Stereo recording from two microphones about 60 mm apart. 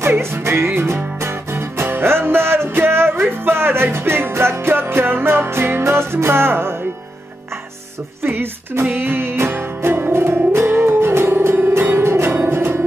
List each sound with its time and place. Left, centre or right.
0.0 s music: right
8.2 s music: right